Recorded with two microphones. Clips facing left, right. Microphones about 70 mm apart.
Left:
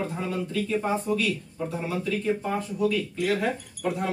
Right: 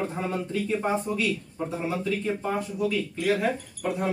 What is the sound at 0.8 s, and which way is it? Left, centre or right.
Speech, centre.